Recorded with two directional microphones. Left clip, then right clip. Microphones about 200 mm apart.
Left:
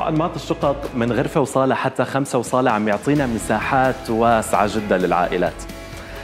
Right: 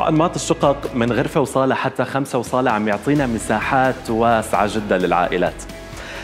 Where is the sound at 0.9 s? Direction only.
Centre (ahead or behind).